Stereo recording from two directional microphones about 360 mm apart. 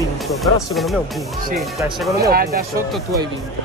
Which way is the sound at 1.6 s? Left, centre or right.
Centre.